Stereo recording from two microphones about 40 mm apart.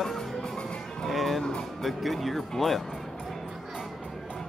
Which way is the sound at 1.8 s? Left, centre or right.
Centre.